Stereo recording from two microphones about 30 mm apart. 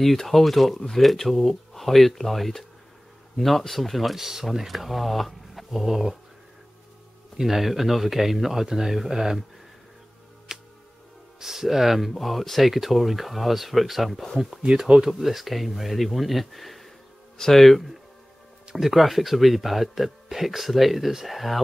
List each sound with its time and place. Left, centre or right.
0.2 s speech: centre
5.9 s speech: centre
7.4 s speech: centre
10.5 s music: centre
11.3 s speech: centre